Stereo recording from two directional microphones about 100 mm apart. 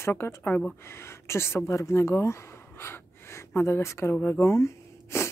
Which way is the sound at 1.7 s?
30° left (ahead or behind).